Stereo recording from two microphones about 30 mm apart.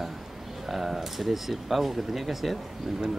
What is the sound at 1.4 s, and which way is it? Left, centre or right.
Speech, centre.